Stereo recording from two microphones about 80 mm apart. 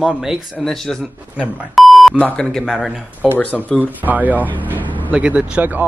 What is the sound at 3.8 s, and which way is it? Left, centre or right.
Speech, right.